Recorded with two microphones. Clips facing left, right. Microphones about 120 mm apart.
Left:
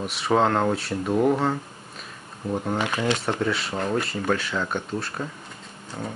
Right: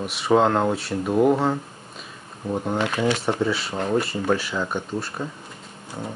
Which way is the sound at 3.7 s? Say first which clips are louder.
Right 2 dB; 25° right (ahead or behind).